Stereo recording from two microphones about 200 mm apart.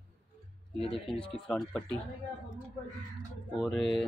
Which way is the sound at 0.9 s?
25° left (ahead or behind).